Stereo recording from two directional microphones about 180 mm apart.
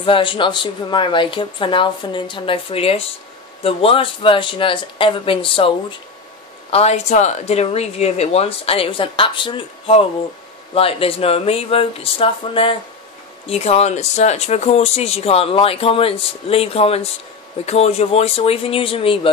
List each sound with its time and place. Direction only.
0.0 s speech: 30° left (ahead or behind)
6.7 s speech: 35° left (ahead or behind)